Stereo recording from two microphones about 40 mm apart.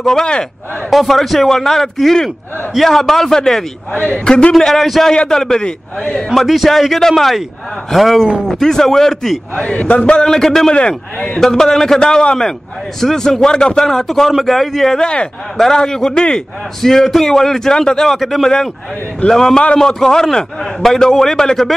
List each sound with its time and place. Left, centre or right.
0.0 s a man's voice: centre
0.8 s a man's voice: centre
3.9 s a man's voice: left
4.6 s a man's voice: centre
6.2 s a man's voice: centre
8.5 s a man's voice: centre
9.6 s a man's voice: left
10.3 s a man's voice: centre
10.7 s a man's voice: left
11.3 s a man's voice: centre
15.0 s a man's voice: left
15.5 s a man's voice: centre
16.8 s a man's voice: centre
19.2 s a man's voice: centre